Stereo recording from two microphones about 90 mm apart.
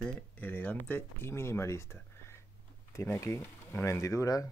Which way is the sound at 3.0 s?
30° left (ahead or behind).